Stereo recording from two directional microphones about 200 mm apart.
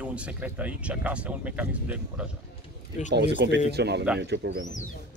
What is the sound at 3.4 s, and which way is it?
Speech, 60° right (ahead or behind).